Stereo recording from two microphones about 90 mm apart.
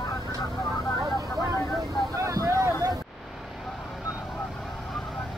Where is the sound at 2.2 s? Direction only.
35° right (ahead or behind).